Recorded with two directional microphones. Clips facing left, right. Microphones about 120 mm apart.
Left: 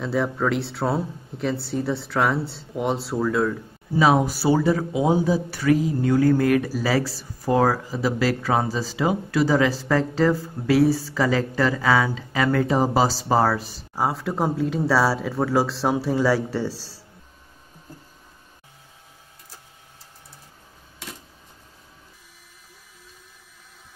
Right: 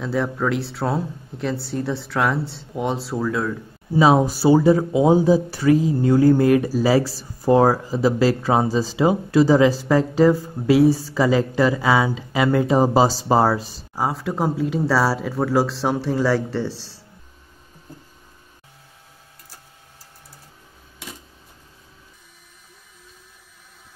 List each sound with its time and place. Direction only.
0.0 s speech: centre (ahead or behind)
4.0 s speech: 25° right (ahead or behind)
13.9 s speech: centre (ahead or behind)